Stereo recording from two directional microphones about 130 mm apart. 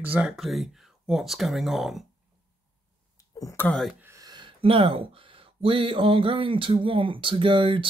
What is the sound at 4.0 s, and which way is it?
Speech, 25° right (ahead or behind).